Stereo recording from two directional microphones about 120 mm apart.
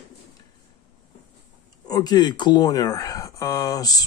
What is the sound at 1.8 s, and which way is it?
Speech, 30° left (ahead or behind).